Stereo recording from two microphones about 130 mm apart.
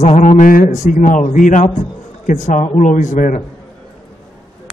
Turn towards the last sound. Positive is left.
turn(degrees=80)